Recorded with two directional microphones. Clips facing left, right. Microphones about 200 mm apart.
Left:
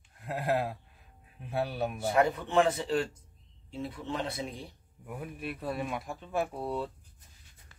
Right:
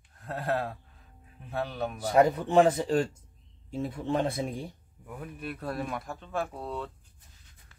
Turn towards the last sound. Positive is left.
turn(degrees=10)  # may be behind; listen again after turning